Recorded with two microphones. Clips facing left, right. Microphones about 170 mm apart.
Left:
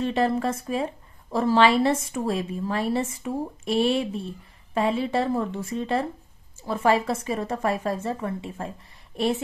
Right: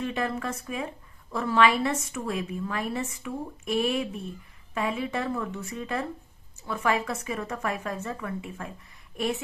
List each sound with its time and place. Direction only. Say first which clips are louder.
0.0 s a woman's voice: left 6 dB; 30° left (ahead or behind)